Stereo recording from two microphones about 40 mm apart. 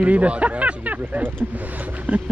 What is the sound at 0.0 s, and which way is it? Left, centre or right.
Speech, right.